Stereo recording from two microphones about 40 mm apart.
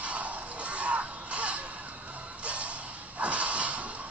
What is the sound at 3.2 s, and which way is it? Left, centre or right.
Whip, right.